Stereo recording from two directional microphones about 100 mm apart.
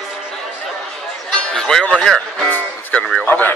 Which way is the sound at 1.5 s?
5° left (ahead or behind).